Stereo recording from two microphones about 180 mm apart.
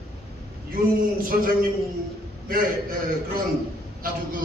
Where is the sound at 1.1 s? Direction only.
50° right (ahead or behind).